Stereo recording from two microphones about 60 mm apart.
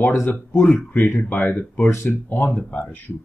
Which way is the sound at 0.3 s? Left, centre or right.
Left.